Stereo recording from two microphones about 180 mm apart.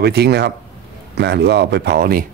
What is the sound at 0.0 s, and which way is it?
Speech, 65° right (ahead or behind).